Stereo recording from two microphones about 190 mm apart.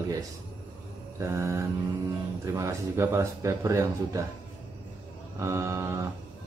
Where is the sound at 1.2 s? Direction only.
15° right (ahead or behind).